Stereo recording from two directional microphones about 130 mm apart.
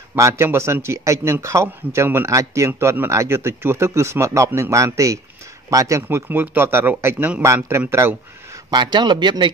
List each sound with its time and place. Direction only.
0.1 s a man's voice: 20° right (ahead or behind)
8.6 s speech: 35° right (ahead or behind)